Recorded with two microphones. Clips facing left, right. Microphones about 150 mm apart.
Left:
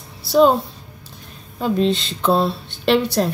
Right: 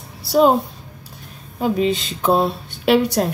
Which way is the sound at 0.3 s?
10° right (ahead or behind).